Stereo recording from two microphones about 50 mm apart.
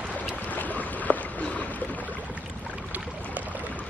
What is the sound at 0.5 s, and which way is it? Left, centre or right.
Boat, left.